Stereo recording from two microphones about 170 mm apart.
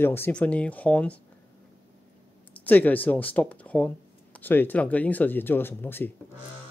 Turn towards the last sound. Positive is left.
turn(degrees=10)  # may be behind; listen again after turning